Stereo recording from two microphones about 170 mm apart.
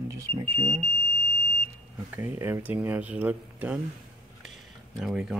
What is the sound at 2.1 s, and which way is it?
Speech, 10° right (ahead or behind).